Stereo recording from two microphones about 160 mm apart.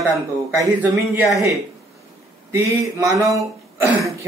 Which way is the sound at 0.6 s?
15° right (ahead or behind).